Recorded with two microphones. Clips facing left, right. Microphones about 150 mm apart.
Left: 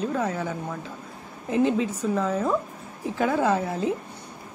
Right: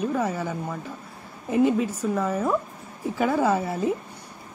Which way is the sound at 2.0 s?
5° right (ahead or behind).